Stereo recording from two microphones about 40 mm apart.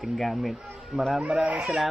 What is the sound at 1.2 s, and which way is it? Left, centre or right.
Speech, right.